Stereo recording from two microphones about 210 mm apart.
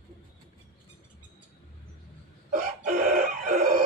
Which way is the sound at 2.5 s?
40° right (ahead or behind).